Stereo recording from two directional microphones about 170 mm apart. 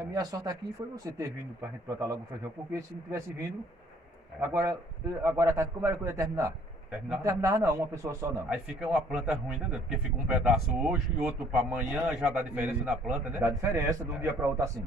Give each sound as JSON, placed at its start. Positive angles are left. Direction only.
{"t": 0.1, "sound": "a man's voice", "side_deg": -20}
{"t": 8.5, "sound": "a man's voice", "side_deg": -5}